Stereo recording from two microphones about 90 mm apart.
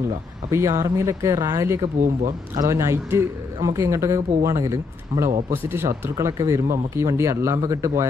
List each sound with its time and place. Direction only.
0.5 s speech: 35° right (ahead or behind)